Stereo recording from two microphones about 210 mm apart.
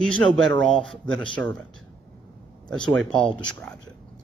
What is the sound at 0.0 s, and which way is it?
Speech, centre (ahead or behind).